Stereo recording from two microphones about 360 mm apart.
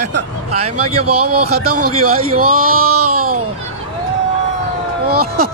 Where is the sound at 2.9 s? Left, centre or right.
Right.